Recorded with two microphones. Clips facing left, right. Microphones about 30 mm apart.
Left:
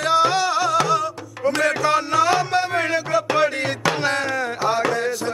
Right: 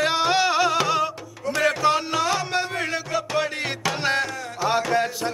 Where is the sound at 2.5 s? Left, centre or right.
Centre.